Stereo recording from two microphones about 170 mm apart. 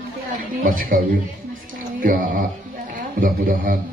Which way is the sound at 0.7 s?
55° right (ahead or behind).